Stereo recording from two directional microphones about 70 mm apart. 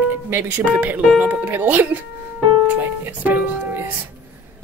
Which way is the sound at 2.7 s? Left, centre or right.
Right.